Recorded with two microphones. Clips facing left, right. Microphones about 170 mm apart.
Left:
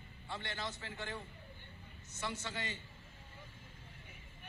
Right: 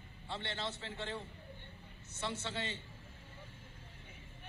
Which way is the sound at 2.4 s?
25° right (ahead or behind).